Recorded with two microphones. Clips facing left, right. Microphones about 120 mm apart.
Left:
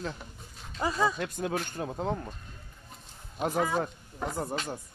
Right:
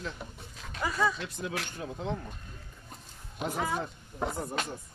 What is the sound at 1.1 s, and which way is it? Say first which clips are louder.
Speech: left 4 dB; 50° left (ahead or behind).